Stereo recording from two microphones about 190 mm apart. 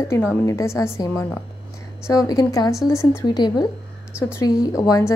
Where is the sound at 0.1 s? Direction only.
15° left (ahead or behind).